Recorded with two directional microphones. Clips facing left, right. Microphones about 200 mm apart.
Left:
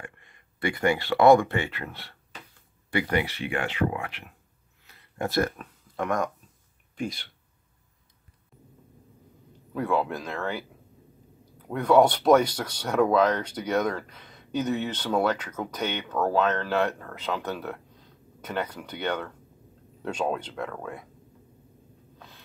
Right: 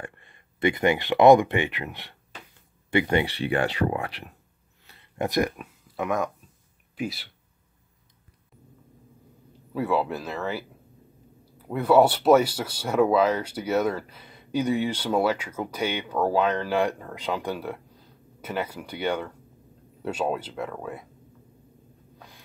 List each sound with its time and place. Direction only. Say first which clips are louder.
0.0 s speech: right 4 dB; 30° right (ahead or behind)
4.8 s a sound: right 2 dB; 25° right (ahead or behind); by 6.3 s 5° right (ahead or behind)
7.0 s speech: right 1 dB; 5° right (ahead or behind)
9.8 s speech: right 1 dB; 5° right (ahead or behind)